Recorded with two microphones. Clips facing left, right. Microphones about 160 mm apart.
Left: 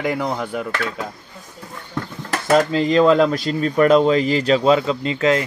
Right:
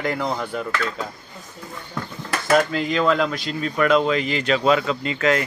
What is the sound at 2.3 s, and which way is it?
Speech, 25° left (ahead or behind).